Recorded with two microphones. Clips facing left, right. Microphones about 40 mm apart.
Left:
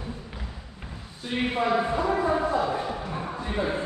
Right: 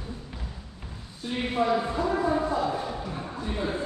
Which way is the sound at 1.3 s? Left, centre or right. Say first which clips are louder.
Left 1 dB; left.